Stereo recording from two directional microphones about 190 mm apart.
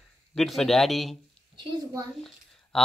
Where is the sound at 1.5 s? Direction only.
20° right (ahead or behind).